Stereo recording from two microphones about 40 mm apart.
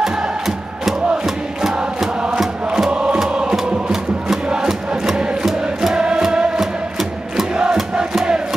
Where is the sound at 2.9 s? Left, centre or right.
Right.